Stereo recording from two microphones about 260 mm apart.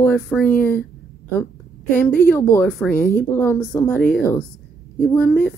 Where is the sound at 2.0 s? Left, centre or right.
Centre.